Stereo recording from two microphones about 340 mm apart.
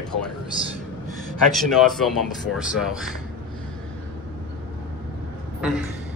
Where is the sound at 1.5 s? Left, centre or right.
Centre.